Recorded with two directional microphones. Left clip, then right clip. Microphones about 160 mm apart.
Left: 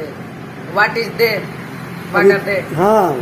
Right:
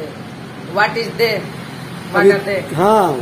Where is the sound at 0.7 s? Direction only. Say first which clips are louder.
Left 1 dB; 10° right (ahead or behind).